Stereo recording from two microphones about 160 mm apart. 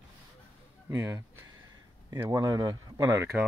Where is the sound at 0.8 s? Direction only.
20° right (ahead or behind).